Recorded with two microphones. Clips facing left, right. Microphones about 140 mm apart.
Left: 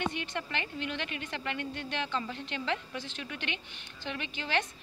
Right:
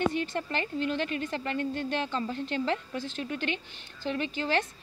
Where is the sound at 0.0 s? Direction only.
40° right (ahead or behind).